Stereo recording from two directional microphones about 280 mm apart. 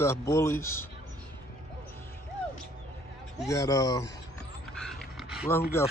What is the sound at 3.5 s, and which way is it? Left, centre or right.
Speech, centre.